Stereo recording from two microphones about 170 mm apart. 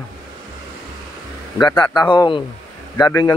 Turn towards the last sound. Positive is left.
turn(degrees=20)  # may be behind; listen again after turning